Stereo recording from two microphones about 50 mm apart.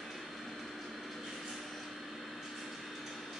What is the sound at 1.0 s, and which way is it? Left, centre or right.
Vehicle, centre.